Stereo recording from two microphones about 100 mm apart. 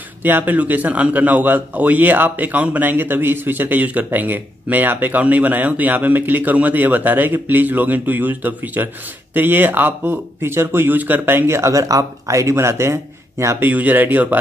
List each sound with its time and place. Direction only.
0.2 s a man's voice: 20° right (ahead or behind)